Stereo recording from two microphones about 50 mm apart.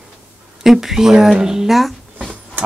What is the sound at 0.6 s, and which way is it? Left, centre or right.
Speech, centre.